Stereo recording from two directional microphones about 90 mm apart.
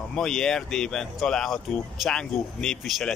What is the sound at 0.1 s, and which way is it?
Speech, 5° left (ahead or behind).